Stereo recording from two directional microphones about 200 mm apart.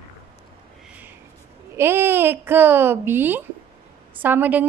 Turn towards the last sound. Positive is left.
turn(degrees=-10)  # may be behind; listen again after turning